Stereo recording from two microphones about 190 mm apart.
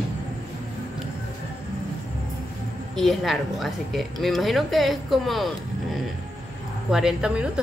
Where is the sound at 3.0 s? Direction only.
Centre (ahead or behind).